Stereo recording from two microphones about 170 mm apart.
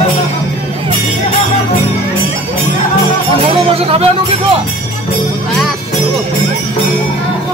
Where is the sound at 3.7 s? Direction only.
35° right (ahead or behind).